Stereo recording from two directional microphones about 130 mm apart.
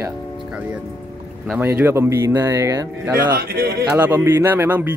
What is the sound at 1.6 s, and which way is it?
Speech, 15° right (ahead or behind).